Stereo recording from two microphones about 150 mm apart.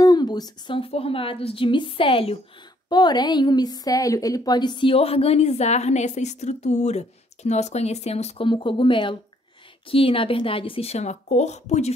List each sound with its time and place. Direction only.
0.0 s a woman's voice: 25° left (ahead or behind); by 8.5 s 45° left (ahead or behind)
8.5 s a woman's voice: 35° left (ahead or behind)